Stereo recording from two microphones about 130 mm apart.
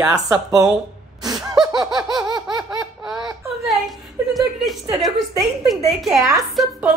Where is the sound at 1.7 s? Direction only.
30° right (ahead or behind).